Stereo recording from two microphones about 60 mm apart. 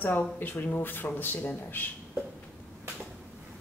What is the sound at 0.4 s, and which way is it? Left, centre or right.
A man's voice, left.